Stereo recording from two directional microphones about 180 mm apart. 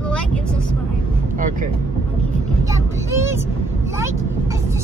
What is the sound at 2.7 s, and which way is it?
Vehicle, 15° right (ahead or behind).